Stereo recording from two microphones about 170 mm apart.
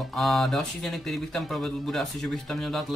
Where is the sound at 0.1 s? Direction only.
Centre (ahead or behind).